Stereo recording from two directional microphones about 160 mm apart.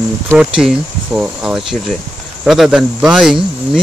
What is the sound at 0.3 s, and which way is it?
Speech, 5° right (ahead or behind).